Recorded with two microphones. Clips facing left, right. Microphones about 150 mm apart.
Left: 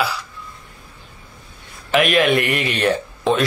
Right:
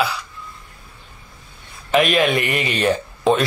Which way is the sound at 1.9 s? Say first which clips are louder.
Left 1 dB; centre (ahead or behind).